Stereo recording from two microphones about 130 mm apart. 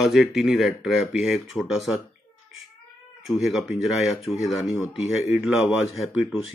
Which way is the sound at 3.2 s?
Centre (ahead or behind).